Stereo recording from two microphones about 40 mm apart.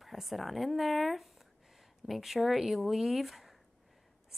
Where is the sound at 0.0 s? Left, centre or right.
Centre.